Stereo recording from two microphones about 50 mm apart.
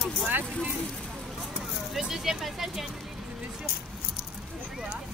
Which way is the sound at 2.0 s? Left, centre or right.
Centre.